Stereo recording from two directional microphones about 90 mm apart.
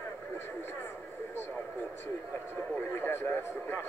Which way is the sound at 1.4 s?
20° left (ahead or behind).